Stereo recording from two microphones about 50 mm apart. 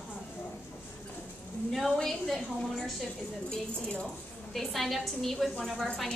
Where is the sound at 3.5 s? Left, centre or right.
Left.